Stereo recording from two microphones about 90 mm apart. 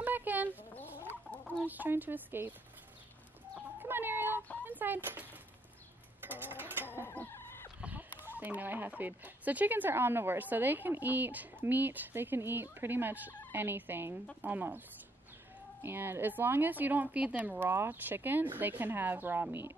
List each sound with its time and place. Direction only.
0.0 s chicken: 20° right (ahead or behind)
1.6 s speech: 20° right (ahead or behind)
3.8 s cat: 25° right (ahead or behind)
4.6 s speech: 20° right (ahead or behind)
6.2 s a sound: 20° right (ahead or behind)
7.1 s chicken: 25° left (ahead or behind)
7.8 s speech: 20° right (ahead or behind)
15.8 s speech: 25° right (ahead or behind)